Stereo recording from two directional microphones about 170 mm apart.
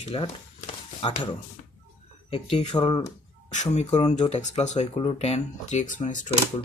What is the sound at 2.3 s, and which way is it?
Speech, 30° left (ahead or behind).